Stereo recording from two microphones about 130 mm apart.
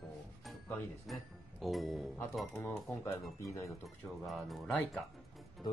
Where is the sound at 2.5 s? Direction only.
15° left (ahead or behind).